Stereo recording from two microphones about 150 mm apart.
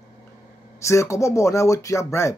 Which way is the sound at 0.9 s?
20° left (ahead or behind).